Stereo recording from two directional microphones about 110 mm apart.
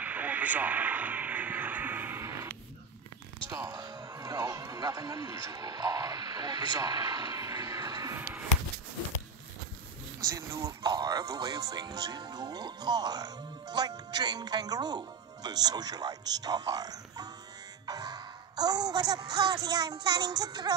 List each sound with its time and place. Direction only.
0.0 s radio: 15° right (ahead or behind)
3.4 s speech: 30° right (ahead or behind)
8.2 s a sound: 15° right (ahead or behind)
10.3 s speech: 25° right (ahead or behind)
10.8 s speech: 40° right (ahead or behind)